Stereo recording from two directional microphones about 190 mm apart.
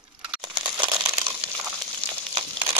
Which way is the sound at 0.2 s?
5° right (ahead or behind).